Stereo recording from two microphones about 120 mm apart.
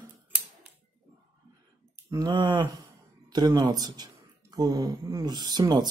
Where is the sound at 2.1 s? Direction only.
35° right (ahead or behind).